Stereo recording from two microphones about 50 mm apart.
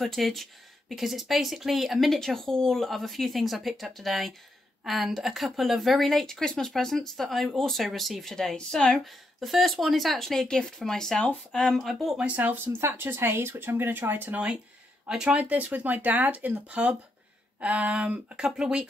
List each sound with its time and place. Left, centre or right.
0.0 s speech: centre
9.0 s speech: centre
12.2 s speech: right
12.6 s speech: right
14.3 s speech: right
15.3 s speech: right